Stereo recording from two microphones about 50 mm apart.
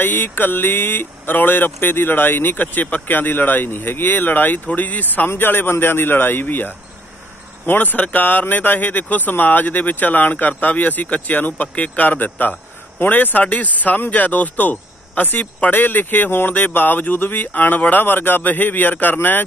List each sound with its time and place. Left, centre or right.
0.0 s speech: left
5.4 s speech: left